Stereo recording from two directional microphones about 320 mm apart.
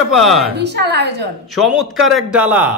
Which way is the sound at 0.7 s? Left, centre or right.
Right.